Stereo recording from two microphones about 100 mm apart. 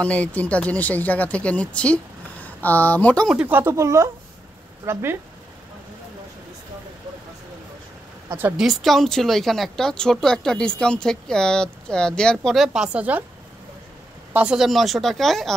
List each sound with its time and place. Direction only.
0.0 s speech: 15° left (ahead or behind)
3.4 s speech: 20° right (ahead or behind)
3.7 s speech: 30° right (ahead or behind)
8.5 s speech: centre (ahead or behind)
14.3 s speech: 10° right (ahead or behind)